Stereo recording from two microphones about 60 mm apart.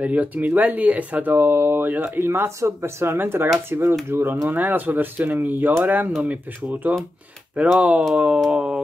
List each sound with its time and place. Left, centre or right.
0.0 s speech: right
4.5 s speech: right
8.5 s a sound: centre